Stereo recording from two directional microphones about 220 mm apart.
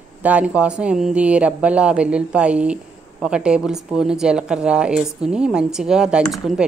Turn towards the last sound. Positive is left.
turn(degrees=0)  # may be behind; listen again after turning